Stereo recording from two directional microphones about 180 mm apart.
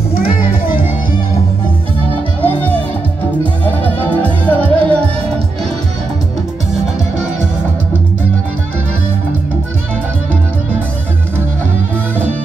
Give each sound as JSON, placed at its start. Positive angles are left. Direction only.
{"t": 0.1, "sound": "music", "side_deg": 55}
{"t": 2.4, "sound": "music", "side_deg": 10}